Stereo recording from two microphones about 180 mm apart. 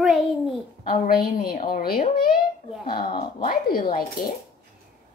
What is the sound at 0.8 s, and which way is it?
A child's voice, 50° left (ahead or behind).